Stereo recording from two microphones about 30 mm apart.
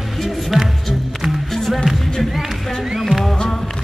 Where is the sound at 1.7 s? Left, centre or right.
Centre.